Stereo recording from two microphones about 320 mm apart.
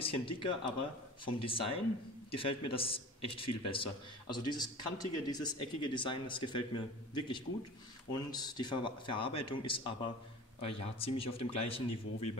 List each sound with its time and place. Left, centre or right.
0.0 s a man's voice: centre